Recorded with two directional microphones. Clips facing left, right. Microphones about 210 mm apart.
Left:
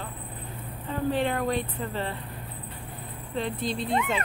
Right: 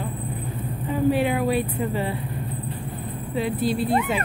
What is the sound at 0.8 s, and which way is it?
A woman's voice, 10° right (ahead or behind).